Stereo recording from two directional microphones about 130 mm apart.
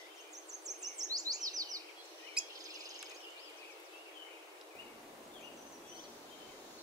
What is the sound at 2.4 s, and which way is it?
Cricket, 5° right (ahead or behind).